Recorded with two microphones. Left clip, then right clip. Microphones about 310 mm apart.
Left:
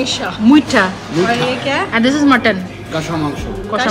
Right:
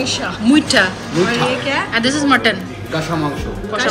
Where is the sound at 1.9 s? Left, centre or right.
Centre.